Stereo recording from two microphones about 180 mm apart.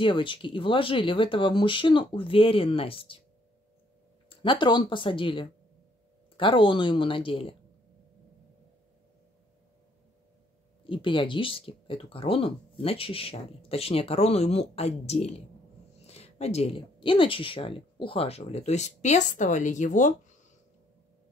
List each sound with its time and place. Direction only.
0.0 s speech: 30° left (ahead or behind)
4.3 s speech: 30° left (ahead or behind)
10.8 s speech: 30° left (ahead or behind); by 20.2 s 45° left (ahead or behind)